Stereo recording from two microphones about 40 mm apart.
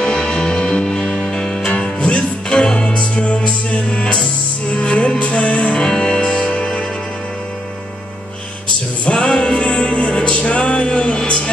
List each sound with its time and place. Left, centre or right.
0.0 s music: left
1.7 s music: left
5.9 s music: left
9.0 s music: left